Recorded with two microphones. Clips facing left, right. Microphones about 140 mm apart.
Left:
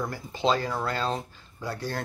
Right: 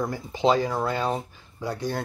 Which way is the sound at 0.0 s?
15° right (ahead or behind).